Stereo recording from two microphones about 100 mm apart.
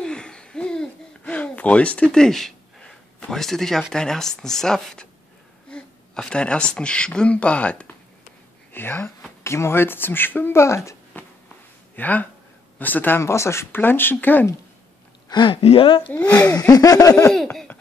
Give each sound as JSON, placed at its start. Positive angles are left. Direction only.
{"t": 0.0, "sound": "a sound", "side_deg": 10}
{"t": 3.9, "sound": "speech", "side_deg": 5}
{"t": 11.9, "sound": "speech", "side_deg": 15}
{"t": 15.2, "sound": "speech", "side_deg": 50}
{"t": 15.6, "sound": "speech", "side_deg": 65}
{"t": 16.1, "sound": "speech", "side_deg": 20}
{"t": 16.7, "sound": "a sound", "side_deg": 35}